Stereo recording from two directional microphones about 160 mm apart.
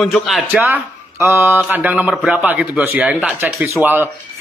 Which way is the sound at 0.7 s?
15° right (ahead or behind).